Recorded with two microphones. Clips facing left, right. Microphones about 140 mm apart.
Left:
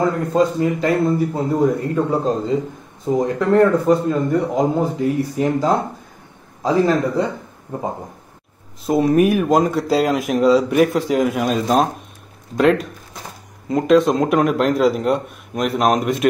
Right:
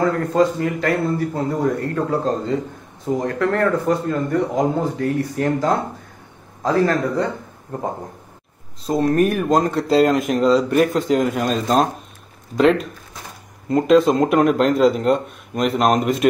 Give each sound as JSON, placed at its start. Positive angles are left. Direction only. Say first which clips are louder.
{"t": 0.0, "sound": "a man's voice", "louder": "even", "side_deg": 15}
{"t": 8.8, "sound": "speech", "louder": "left 2 dB", "side_deg": 10}